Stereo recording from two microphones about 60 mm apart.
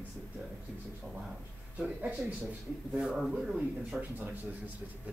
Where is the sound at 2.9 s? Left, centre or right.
Centre.